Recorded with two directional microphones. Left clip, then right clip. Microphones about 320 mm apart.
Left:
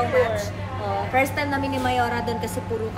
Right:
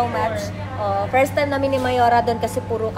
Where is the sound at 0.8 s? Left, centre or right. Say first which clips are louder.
Right 4 dB; centre.